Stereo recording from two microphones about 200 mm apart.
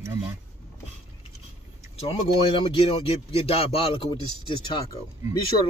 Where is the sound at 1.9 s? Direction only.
30° left (ahead or behind).